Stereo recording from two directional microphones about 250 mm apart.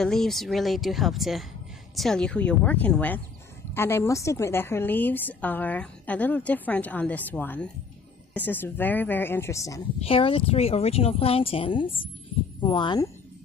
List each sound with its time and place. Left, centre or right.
0.0 s a woman's voice: centre